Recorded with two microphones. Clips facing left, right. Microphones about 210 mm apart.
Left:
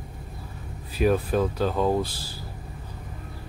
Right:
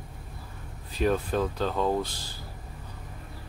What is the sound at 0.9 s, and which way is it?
Speech, 5° left (ahead or behind).